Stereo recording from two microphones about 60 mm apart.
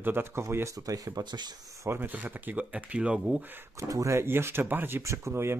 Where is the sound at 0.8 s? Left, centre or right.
Right.